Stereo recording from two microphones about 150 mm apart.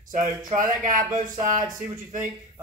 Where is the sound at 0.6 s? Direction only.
60° right (ahead or behind).